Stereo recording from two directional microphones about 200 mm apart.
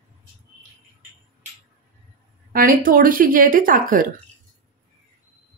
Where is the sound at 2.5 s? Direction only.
45° right (ahead or behind).